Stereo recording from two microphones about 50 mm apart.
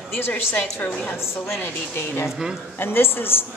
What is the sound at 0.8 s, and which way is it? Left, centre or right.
Speech, left.